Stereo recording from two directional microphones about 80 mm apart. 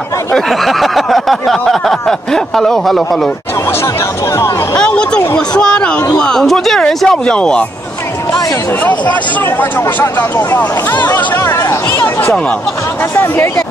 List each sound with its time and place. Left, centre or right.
0.3 s a sound: centre
4.7 s speech: centre
9.6 s speech: left